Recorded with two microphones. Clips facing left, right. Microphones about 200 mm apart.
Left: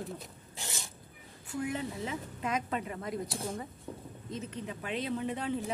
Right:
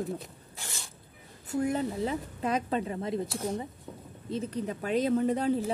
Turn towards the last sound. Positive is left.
turn(degrees=-40)  # may be behind; listen again after turning